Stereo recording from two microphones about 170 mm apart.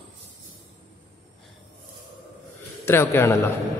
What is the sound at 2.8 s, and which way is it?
Speech, 15° left (ahead or behind).